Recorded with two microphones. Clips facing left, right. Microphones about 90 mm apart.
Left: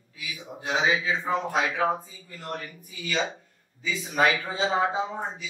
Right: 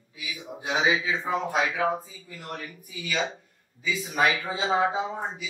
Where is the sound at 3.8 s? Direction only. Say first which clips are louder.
Left 1 dB; 10° right (ahead or behind).